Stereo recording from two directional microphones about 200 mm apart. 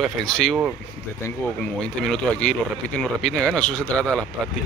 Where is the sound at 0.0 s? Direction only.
5° left (ahead or behind).